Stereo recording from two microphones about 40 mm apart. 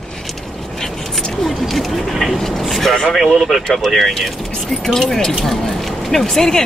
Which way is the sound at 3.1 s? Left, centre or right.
Centre.